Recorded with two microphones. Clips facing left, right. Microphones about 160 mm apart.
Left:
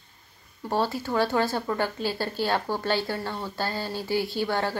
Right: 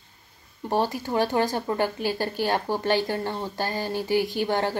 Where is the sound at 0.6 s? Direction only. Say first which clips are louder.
Right 1 dB; 15° right (ahead or behind).